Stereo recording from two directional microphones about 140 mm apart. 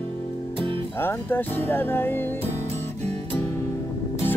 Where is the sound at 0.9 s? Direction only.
15° left (ahead or behind).